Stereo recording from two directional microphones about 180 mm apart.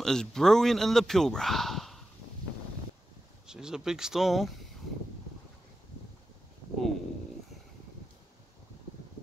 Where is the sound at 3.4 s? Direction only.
5° right (ahead or behind).